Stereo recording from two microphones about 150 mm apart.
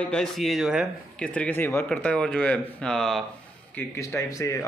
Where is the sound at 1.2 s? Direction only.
10° left (ahead or behind).